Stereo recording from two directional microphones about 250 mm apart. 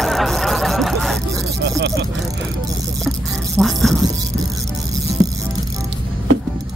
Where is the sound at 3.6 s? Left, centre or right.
Centre.